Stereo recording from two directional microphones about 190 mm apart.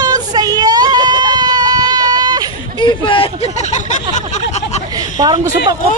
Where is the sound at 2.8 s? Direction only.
25° left (ahead or behind).